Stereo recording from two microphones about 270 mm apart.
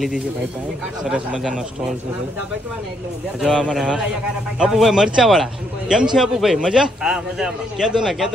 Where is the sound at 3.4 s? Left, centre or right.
Centre.